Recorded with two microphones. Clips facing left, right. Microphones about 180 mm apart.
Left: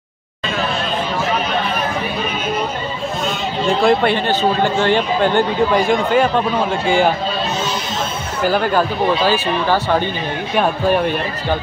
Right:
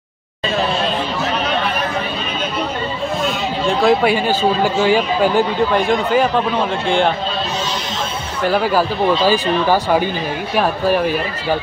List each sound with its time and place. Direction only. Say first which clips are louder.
3.6 s speech: even; centre (ahead or behind)
8.4 s speech: even; centre (ahead or behind)